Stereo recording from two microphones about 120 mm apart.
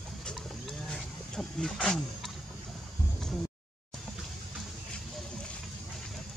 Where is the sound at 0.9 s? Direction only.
5° left (ahead or behind).